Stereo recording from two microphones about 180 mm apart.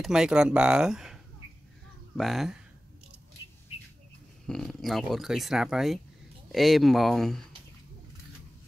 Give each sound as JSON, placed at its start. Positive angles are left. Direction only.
{"t": 0.0, "sound": "speech", "side_deg": -5}
{"t": 4.5, "sound": "speech", "side_deg": 0}